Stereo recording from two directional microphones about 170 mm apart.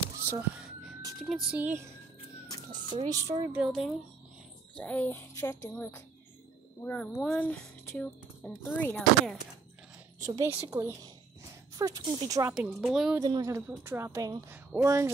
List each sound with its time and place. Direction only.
0.3 s a woman's voice: 10° right (ahead or behind)
2.7 s speech: 25° right (ahead or behind)
3.5 s a woman's voice: centre (ahead or behind)
4.7 s speech: 10° left (ahead or behind)
8.9 s a woman's voice: centre (ahead or behind)
10.2 s a woman's voice: 15° right (ahead or behind)
12.4 s a woman's voice: 5° right (ahead or behind)
13.2 s a woman's voice: 20° right (ahead or behind)